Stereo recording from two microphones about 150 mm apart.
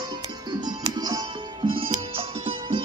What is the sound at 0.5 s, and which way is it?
Music, 30° right (ahead or behind).